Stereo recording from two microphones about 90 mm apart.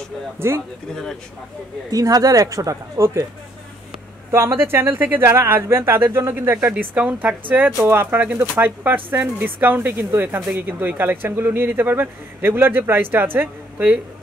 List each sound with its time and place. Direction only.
0.4 s speech: 30° right (ahead or behind)
1.9 s speech: 40° right (ahead or behind)
4.3 s a woman's voice: 30° right (ahead or behind)